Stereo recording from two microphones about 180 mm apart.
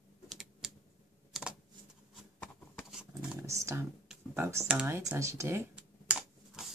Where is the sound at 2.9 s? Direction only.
5° right (ahead or behind).